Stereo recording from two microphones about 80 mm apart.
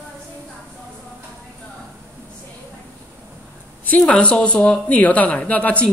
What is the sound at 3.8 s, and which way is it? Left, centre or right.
Speech, centre.